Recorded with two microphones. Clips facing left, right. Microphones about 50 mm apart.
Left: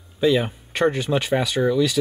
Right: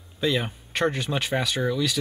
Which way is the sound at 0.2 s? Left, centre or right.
Centre.